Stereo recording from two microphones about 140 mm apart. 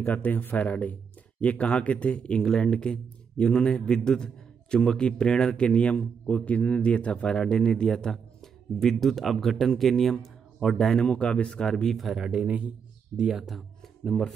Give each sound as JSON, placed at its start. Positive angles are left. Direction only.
{"t": 0.0, "sound": "a man's voice", "side_deg": 10}